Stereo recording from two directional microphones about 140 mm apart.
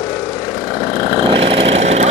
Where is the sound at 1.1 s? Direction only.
40° right (ahead or behind).